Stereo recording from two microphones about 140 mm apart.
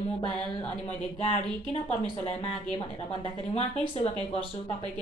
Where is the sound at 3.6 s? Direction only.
40° left (ahead or behind).